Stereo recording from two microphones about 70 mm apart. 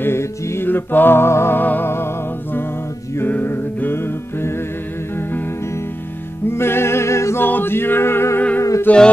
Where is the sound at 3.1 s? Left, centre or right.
Left.